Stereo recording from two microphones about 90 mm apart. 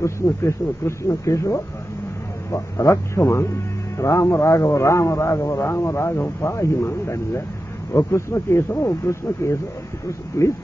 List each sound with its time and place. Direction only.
0.0 s a man's voice: 30° left (ahead or behind)